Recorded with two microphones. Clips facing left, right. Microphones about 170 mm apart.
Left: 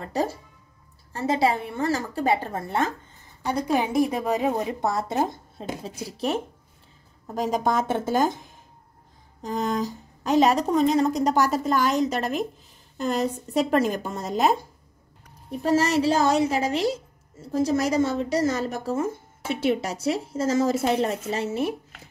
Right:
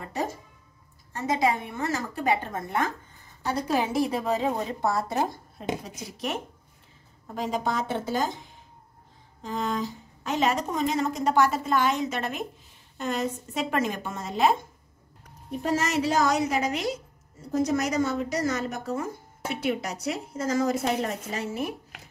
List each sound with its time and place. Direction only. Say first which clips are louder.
0.1 s a woman's voice: left 5 dB; 35° left (ahead or behind)
3.4 s a woman's voice: left 2 dB; 15° left (ahead or behind); by 6.4 s 30° left (ahead or behind)
7.3 s speech: left 4 dB; 45° left (ahead or behind)
9.4 s a woman's voice: left 3 dB; 40° left (ahead or behind)
15.6 s speech: left 5 dB; 30° left (ahead or behind)